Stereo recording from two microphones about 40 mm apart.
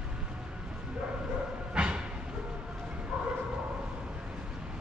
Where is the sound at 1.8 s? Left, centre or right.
Right.